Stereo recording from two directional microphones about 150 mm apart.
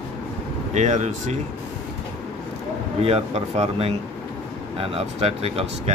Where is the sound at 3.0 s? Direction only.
40° right (ahead or behind).